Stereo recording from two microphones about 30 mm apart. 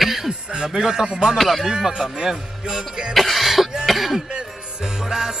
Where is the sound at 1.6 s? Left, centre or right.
Right.